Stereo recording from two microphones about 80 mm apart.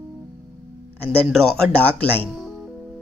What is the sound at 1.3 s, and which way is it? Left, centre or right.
Speech, centre.